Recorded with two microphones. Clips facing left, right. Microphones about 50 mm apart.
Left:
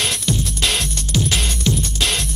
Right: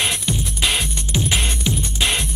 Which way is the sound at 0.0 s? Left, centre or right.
Centre.